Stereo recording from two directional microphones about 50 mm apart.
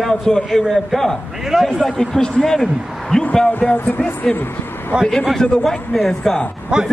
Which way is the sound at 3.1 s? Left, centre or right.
Centre.